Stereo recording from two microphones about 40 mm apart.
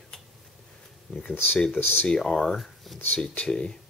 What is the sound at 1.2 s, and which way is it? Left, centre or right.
Speech, left.